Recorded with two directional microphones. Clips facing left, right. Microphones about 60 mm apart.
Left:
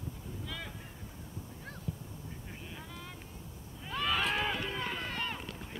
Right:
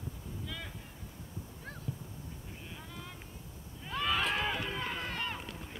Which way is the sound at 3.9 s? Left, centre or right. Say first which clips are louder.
Even; centre.